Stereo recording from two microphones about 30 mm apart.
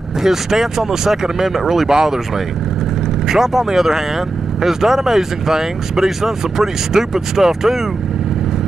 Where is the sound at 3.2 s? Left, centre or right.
Centre.